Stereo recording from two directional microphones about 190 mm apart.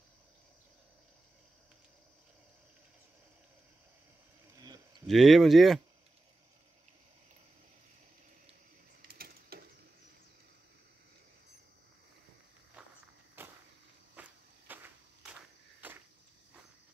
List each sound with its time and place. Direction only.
5.0 s speech: centre (ahead or behind)
9.0 s a sound: 55° right (ahead or behind)
12.8 s walk: 5° right (ahead or behind)
13.4 s cricket: 10° right (ahead or behind)
14.1 s walk: 10° right (ahead or behind)
15.8 s a sound: 10° right (ahead or behind)